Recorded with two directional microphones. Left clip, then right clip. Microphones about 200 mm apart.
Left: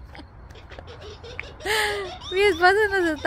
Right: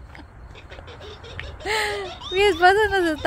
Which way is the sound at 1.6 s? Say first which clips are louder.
Even; 5° left (ahead or behind).